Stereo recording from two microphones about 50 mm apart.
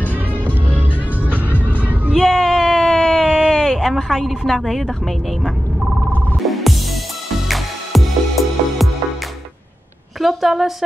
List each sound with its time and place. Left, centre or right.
0.0 s music: left
1.8 s music: right
2.1 s a sound: centre
3.7 s a woman's voice: centre
6.4 s music: centre
10.2 s a woman's voice: centre